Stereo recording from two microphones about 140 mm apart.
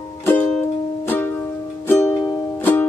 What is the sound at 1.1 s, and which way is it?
Music, 15° left (ahead or behind).